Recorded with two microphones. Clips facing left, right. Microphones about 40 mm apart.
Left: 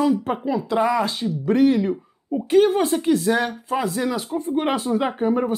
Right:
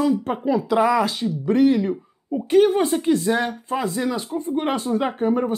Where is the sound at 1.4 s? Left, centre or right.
Centre.